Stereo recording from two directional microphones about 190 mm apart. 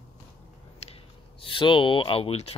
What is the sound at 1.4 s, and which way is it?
Speech, 25° left (ahead or behind).